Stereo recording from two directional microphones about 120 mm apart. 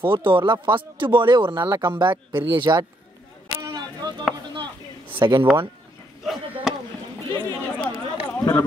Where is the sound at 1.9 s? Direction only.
40° right (ahead or behind).